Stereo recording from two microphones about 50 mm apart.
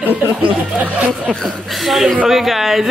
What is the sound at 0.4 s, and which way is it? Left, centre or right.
Speech, right.